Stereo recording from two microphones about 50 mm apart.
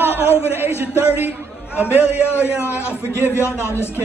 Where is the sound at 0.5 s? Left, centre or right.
Right.